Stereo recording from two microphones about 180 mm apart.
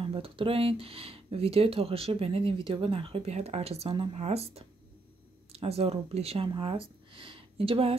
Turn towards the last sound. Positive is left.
turn(degrees=-30)  # may be behind; listen again after turning